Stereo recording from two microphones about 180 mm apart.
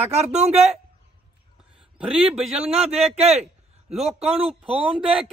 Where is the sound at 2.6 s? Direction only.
35° right (ahead or behind).